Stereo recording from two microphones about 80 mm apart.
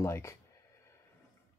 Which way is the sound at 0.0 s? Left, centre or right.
Left.